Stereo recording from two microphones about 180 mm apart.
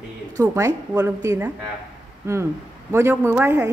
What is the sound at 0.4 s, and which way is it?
A woman's voice, 20° right (ahead or behind).